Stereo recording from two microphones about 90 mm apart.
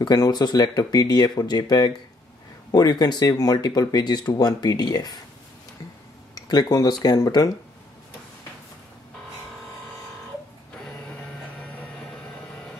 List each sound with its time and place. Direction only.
0.0 s speech: 50° left (ahead or behind)
6.3 s speech: 45° left (ahead or behind)